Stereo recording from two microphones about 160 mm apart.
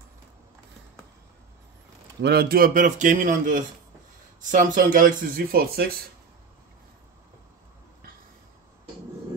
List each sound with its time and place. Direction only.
2.2 s speech: 75° right (ahead or behind)